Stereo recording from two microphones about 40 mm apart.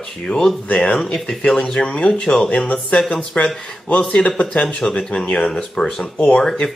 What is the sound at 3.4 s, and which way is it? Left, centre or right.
Speech, left.